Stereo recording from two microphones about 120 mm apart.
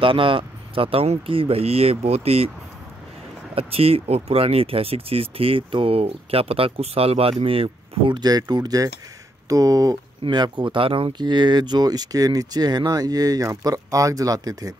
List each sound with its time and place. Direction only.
0.0 s speech: 45° right (ahead or behind)
3.5 s speech: 55° right (ahead or behind)
8.2 s speech: 35° right (ahead or behind)
10.2 s speech: 40° right (ahead or behind)